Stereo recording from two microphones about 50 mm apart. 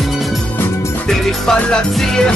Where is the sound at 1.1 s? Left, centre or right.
Centre.